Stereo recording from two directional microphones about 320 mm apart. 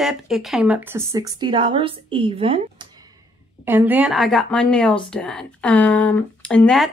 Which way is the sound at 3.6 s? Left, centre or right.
Centre.